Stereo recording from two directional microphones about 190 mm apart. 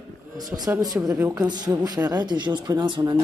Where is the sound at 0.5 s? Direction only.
20° right (ahead or behind).